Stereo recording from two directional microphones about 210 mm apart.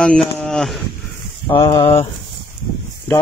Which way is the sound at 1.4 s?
20° left (ahead or behind).